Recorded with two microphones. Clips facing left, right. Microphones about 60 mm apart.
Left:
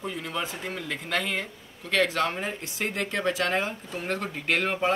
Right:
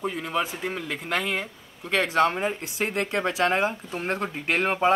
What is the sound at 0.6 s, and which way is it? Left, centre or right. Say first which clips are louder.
Speech: right 3 dB; centre.